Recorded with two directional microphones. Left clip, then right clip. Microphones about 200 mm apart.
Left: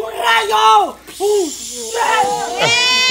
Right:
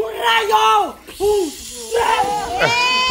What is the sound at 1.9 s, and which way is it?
Speech, 20° left (ahead or behind).